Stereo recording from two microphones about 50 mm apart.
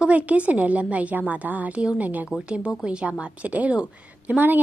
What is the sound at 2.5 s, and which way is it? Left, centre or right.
A woman's voice, right.